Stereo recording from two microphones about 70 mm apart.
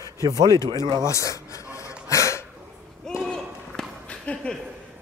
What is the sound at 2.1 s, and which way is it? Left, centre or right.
Dog, left.